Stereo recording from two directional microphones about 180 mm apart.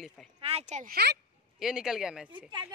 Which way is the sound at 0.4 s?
35° right (ahead or behind).